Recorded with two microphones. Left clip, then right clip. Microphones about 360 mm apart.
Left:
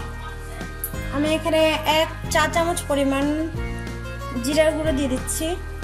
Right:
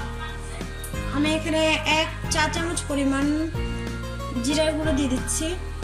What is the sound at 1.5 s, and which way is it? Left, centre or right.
Music, left.